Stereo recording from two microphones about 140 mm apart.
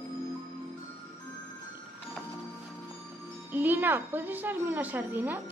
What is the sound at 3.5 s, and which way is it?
A woman's voice, 15° right (ahead or behind).